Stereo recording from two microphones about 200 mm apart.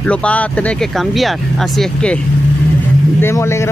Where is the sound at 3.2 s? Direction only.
15° left (ahead or behind).